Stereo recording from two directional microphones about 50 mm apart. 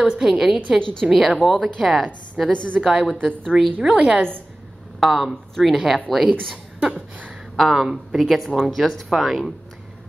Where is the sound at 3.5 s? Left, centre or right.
Centre.